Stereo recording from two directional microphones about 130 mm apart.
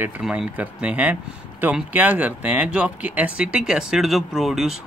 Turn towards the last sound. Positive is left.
turn(degrees=0)  # may be behind; listen again after turning